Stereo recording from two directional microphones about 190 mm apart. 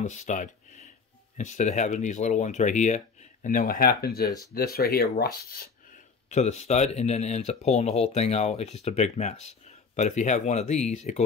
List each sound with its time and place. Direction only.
0.0 s speech: 40° left (ahead or behind)
6.2 s speech: 35° left (ahead or behind)